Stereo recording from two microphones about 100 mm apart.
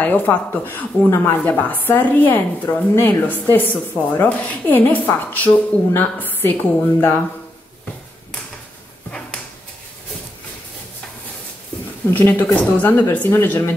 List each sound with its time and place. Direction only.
0.0 s speech: 15° left (ahead or behind)
12.1 s speech: 20° left (ahead or behind)